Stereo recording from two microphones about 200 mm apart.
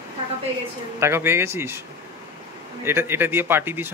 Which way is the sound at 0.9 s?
15° right (ahead or behind).